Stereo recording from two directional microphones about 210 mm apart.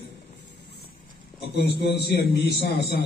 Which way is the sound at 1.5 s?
50° left (ahead or behind).